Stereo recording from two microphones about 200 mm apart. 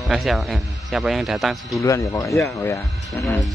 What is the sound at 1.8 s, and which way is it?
Speech, 15° left (ahead or behind).